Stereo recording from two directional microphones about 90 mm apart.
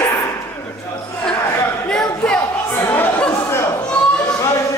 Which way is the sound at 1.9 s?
10° left (ahead or behind).